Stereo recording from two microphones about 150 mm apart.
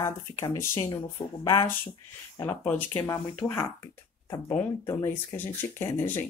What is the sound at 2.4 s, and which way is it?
Speech, 15° left (ahead or behind).